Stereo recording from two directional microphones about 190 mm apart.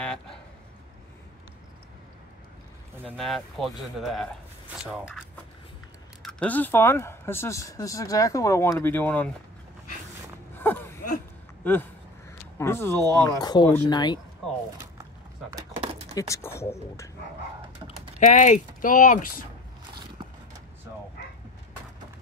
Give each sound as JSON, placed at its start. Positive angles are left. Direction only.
{"t": 3.2, "sound": "speech", "side_deg": 0}
{"t": 6.2, "sound": "speech", "side_deg": 10}
{"t": 10.5, "sound": "a sound", "side_deg": 10}
{"t": 11.6, "sound": "speech", "side_deg": 10}
{"t": 12.9, "sound": "speech", "side_deg": -20}
{"t": 13.4, "sound": "speech", "side_deg": 20}
{"t": 15.8, "sound": "a sound", "side_deg": -30}
{"t": 16.2, "sound": "speech", "side_deg": 15}
{"t": 18.2, "sound": "speech", "side_deg": 40}